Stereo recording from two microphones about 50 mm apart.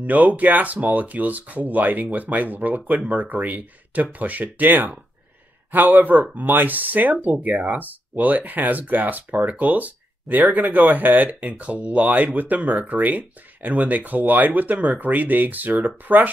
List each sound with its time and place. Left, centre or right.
0.0 s speech: right